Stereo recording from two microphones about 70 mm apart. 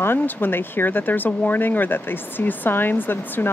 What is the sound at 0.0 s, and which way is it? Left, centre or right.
Speech, left.